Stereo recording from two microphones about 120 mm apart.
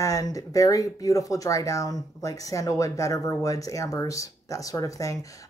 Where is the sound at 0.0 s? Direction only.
30° left (ahead or behind).